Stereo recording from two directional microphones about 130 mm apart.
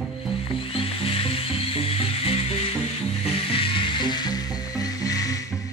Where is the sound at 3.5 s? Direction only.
45° left (ahead or behind).